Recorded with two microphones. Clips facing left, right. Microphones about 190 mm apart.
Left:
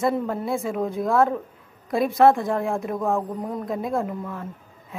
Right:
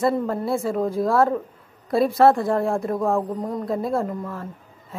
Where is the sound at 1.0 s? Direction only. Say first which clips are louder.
Even; centre (ahead or behind).